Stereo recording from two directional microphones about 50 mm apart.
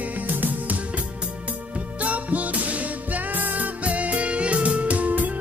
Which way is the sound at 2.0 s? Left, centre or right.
Right.